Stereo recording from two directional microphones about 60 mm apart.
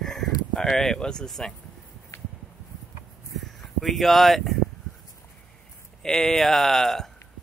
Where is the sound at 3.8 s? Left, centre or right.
Centre.